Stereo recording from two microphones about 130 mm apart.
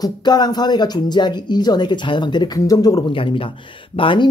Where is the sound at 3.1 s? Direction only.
40° left (ahead or behind).